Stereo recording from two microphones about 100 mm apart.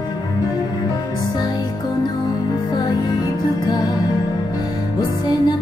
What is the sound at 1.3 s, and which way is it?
Music, 45° left (ahead or behind).